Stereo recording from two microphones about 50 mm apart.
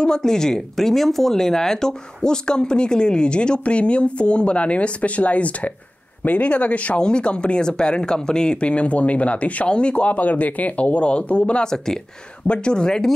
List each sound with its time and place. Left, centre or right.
0.0 s speech: centre